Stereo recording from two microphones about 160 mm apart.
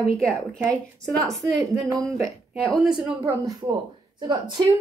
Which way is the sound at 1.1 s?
20° right (ahead or behind).